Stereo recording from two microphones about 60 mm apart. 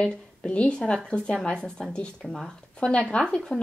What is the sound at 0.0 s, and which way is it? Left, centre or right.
A woman's voice, centre.